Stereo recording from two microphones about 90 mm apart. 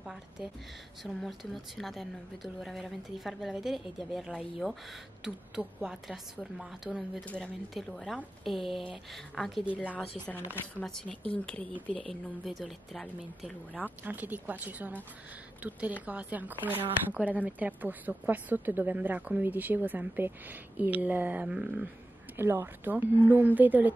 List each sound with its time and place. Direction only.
0.0 s a sound: 5° right (ahead or behind)
1.0 s a woman's voice: centre (ahead or behind)
9.9 s speech: 15° left (ahead or behind)
11.9 s a woman's voice: centre (ahead or behind)
13.8 s a woman's voice: 20° right (ahead or behind)
22.4 s a woman's voice: 25° right (ahead or behind)